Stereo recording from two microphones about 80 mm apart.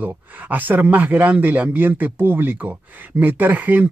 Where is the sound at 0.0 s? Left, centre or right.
Right.